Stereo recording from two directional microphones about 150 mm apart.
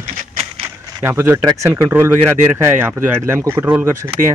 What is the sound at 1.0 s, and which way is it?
Speech, 15° right (ahead or behind).